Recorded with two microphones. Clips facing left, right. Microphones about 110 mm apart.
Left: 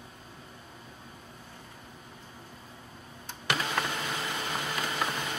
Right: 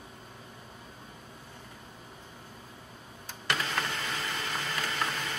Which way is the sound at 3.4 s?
10° left (ahead or behind).